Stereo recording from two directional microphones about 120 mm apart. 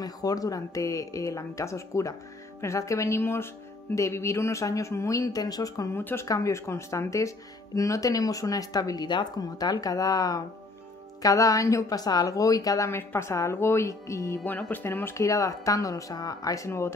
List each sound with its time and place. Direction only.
0.0 s a woman's voice: 30° left (ahead or behind)